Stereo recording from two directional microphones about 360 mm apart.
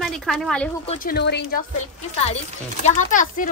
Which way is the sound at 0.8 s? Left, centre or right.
Left.